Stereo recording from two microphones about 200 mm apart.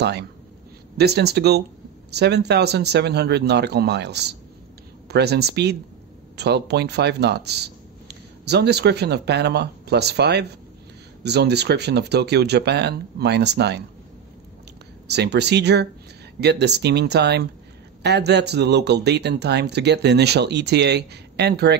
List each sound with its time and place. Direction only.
0.9 s speech: 55° right (ahead or behind)
15.0 s speech: 55° right (ahead or behind)